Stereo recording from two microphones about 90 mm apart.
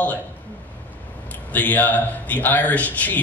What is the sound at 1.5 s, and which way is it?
A man's voice, 20° left (ahead or behind).